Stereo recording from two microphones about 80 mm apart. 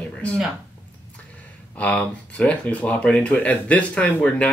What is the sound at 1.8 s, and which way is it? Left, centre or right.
Speech, centre.